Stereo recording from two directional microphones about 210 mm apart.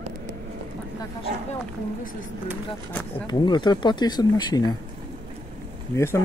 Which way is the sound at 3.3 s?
20° left (ahead or behind).